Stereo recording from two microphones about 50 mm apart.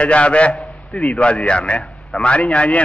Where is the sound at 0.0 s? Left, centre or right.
Left.